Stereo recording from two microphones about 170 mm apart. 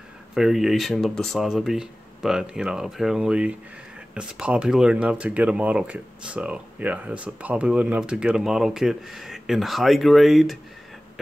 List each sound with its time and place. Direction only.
0.3 s speech: centre (ahead or behind)